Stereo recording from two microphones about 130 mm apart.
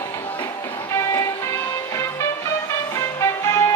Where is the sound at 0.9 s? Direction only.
20° left (ahead or behind).